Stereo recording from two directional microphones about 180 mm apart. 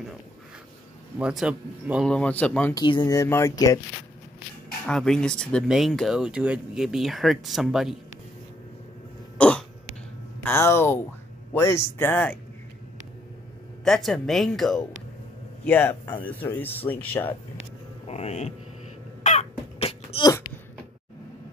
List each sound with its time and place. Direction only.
1.1 s a man's voice: 5° right (ahead or behind)
2.0 s speech: 5° left (ahead or behind)
2.7 s speech: 25° left (ahead or behind)
4.8 s speech: 5° left (ahead or behind)
9.4 s cough: 5° left (ahead or behind)
10.4 s speech: 15° left (ahead or behind)
13.8 s speech: centre (ahead or behind)
18.0 s speech: 35° left (ahead or behind)
19.2 s cough: 40° left (ahead or behind)